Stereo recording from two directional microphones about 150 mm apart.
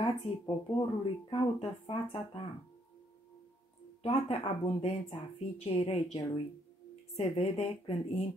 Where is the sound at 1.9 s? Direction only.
35° left (ahead or behind).